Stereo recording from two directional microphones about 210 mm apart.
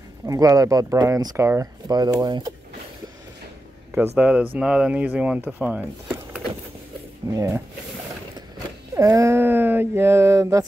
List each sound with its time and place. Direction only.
0.3 s speech: 15° right (ahead or behind)
3.9 s speech: 10° right (ahead or behind)
8.9 s a sound: 15° right (ahead or behind)